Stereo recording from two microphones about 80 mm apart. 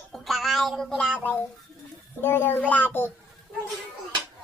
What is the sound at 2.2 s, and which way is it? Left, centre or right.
Speech, left.